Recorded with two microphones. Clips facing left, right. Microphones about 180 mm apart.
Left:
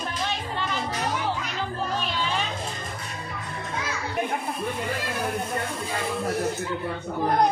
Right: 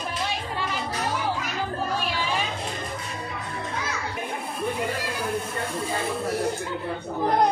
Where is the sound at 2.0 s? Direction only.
10° right (ahead or behind).